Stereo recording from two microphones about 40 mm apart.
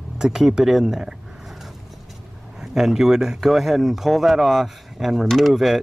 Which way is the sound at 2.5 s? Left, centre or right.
Centre.